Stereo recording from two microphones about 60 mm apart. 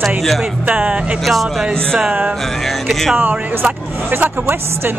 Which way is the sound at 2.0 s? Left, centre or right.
Centre.